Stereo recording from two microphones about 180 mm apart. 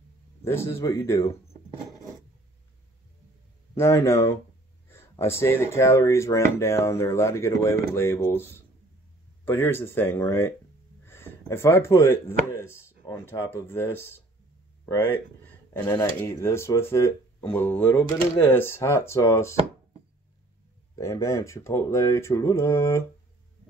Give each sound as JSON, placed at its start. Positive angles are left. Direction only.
{"t": 0.4, "sound": "speech", "side_deg": 15}
{"t": 3.7, "sound": "speech", "side_deg": 15}
{"t": 12.5, "sound": "a sound", "side_deg": 15}
{"t": 13.1, "sound": "speech", "side_deg": 15}
{"t": 20.9, "sound": "speech", "side_deg": 20}